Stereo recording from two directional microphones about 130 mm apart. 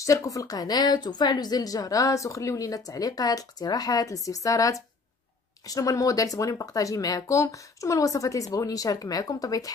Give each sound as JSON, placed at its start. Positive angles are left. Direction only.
{"t": 0.0, "sound": "a woman's voice", "side_deg": 25}